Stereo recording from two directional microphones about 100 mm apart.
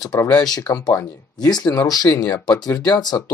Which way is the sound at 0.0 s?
40° left (ahead or behind).